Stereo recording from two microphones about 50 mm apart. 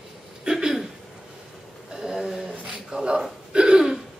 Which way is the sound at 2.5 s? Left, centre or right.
Right.